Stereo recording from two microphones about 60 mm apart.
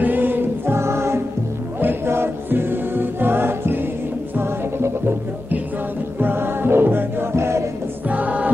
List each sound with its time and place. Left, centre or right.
0.0 s choir: right
0.7 s music: right
8.1 s choir: right